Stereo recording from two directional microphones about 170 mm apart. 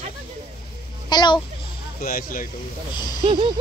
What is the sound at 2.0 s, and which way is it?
Speech, 55° left (ahead or behind).